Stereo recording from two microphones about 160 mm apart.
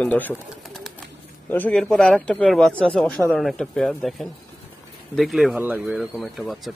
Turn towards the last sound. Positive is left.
turn(degrees=0)  # may be behind; listen again after turning